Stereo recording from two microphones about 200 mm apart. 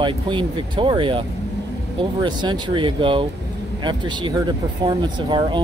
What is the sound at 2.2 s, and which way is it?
Speech, 20° right (ahead or behind).